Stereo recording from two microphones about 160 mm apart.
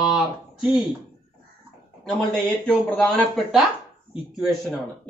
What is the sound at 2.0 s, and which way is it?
A man's voice, 5° left (ahead or behind).